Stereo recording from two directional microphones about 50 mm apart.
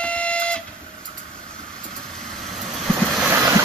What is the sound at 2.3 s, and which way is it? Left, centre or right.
Vehicle, centre.